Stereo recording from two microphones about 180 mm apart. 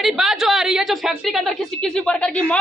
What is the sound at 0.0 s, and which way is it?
A woman's voice, centre (ahead or behind).